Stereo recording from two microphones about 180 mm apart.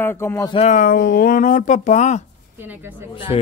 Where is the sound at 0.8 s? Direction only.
60° left (ahead or behind).